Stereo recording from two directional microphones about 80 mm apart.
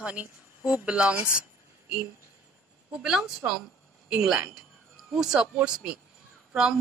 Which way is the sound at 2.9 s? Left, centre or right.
Centre.